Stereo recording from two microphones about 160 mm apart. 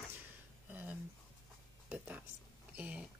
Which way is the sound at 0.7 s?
10° right (ahead or behind).